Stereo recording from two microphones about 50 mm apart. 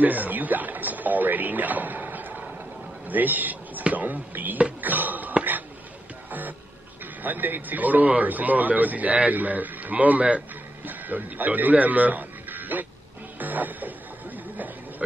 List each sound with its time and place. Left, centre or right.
0.0 s a sound: right
3.8 s a man's voice: right
4.8 s a sound: right
7.2 s a man's voice: right
13.4 s music: right
15.0 s speech: right